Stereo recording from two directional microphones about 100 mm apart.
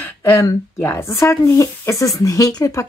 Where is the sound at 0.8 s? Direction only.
25° left (ahead or behind).